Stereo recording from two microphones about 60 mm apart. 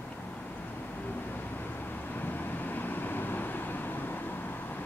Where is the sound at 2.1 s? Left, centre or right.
Left.